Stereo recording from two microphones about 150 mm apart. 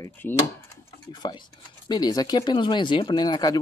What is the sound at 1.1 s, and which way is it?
Speech, 30° left (ahead or behind).